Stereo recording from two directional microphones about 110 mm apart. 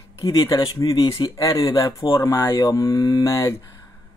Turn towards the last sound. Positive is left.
turn(degrees=30)  # may be behind; listen again after turning